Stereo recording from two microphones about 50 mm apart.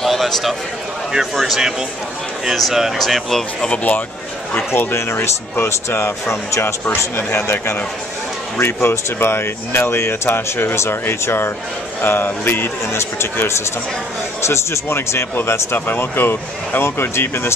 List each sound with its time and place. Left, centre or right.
0.0 s a sound: centre
1.3 s speech: centre
3.6 s speech: left
4.6 s speech: left